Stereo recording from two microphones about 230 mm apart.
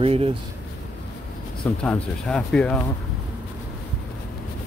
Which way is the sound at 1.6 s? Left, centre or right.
Centre.